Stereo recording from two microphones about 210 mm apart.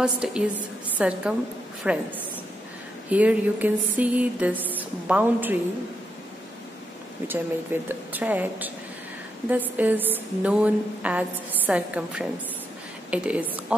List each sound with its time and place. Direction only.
0.0 s a woman's voice: 5° right (ahead or behind)
3.1 s a woman's voice: 5° right (ahead or behind)
7.2 s a woman's voice: 10° right (ahead or behind)